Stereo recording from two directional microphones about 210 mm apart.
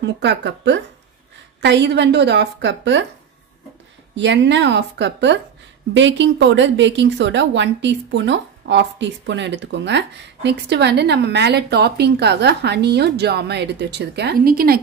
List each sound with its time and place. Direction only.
0.0 s a woman's voice: 55° right (ahead or behind)
4.1 s a woman's voice: 55° right (ahead or behind)